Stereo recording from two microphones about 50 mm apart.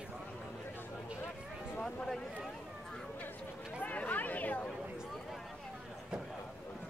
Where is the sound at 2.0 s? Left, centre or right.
Centre.